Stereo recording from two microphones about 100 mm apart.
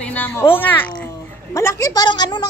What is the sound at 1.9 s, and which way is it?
Speech, 45° left (ahead or behind).